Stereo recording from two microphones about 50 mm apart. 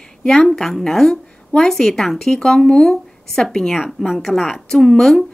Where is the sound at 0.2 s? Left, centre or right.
Centre.